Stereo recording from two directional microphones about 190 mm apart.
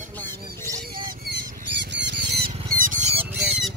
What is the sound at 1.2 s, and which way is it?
Rodents, 65° right (ahead or behind).